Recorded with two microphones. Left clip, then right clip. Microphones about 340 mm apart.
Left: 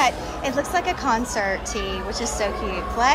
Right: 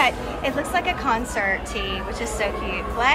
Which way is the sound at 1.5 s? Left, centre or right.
Left.